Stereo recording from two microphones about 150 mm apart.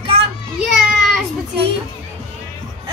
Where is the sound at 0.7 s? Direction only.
Centre (ahead or behind).